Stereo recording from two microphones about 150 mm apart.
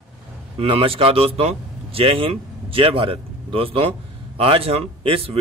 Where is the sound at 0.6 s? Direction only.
40° right (ahead or behind).